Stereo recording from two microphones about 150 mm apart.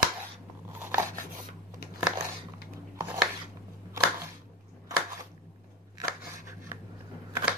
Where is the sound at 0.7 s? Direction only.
10° right (ahead or behind).